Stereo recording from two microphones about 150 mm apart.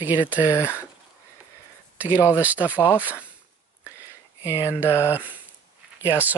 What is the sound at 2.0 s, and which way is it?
Speech, 10° right (ahead or behind).